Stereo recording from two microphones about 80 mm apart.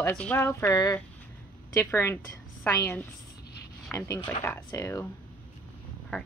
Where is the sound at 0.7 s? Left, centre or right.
Left.